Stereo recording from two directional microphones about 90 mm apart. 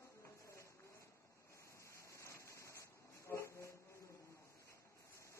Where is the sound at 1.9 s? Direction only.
35° left (ahead or behind).